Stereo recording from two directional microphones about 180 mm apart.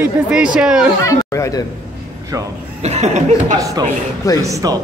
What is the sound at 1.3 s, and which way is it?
Speech, 20° left (ahead or behind).